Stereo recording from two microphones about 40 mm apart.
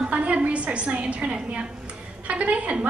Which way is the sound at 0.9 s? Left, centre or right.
Right.